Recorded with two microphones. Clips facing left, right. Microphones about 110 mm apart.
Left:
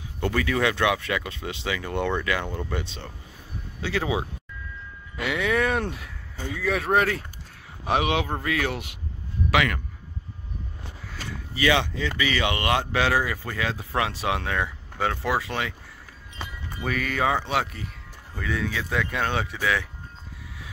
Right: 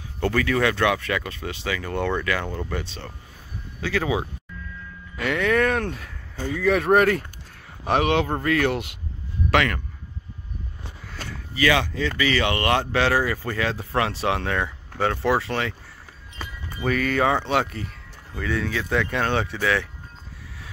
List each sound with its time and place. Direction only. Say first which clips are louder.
0.2 s speech: right 2 dB; 15° left (ahead or behind)
5.1 s speech: right 3 dB; 10° left (ahead or behind)
11.5 s speech: right 2 dB; 20° left (ahead or behind)
16.8 s speech: right 4 dB; 5° left (ahead or behind)